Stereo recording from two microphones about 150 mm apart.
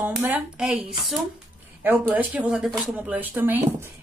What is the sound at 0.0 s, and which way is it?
Speech, 10° right (ahead or behind).